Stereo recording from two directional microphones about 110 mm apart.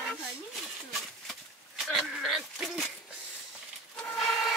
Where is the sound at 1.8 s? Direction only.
Centre (ahead or behind).